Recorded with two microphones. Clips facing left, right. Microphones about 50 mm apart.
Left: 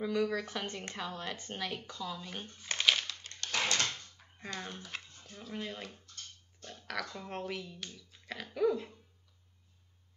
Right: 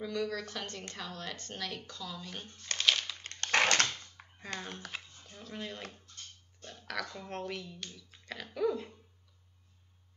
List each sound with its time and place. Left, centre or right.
0.0 s speech: centre
3.5 s a sound: right
4.6 s speech: centre